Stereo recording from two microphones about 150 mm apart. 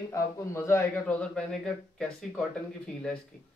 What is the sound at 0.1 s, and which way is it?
Speech, 20° left (ahead or behind).